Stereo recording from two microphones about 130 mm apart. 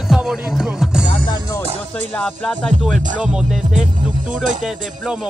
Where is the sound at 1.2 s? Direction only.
35° left (ahead or behind).